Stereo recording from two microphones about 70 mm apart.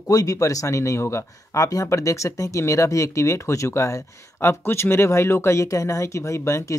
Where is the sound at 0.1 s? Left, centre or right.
Left.